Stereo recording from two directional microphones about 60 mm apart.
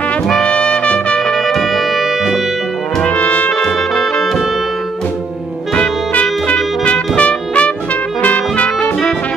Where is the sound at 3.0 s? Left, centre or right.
Centre.